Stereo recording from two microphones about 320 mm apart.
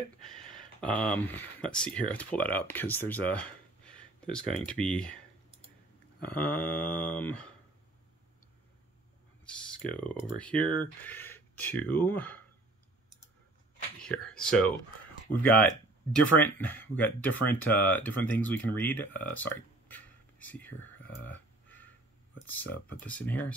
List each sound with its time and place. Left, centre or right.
0.2 s speech: centre
6.1 s a sound: centre
6.7 s speech: centre
9.5 s speech: centre
14.0 s speech: centre
15.3 s speech: left
16.3 s speech: centre